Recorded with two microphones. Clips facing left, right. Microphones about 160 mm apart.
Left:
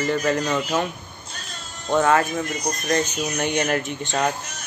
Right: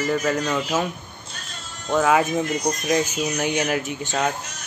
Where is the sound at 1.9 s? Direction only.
5° right (ahead or behind).